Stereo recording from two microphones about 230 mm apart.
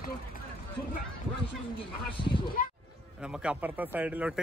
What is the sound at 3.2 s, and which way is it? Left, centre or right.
Speech, centre.